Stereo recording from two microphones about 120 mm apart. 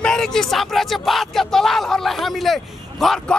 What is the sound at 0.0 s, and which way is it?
Speech, 5° left (ahead or behind).